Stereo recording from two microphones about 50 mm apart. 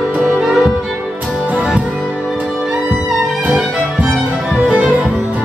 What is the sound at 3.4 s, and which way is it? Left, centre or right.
Music, right.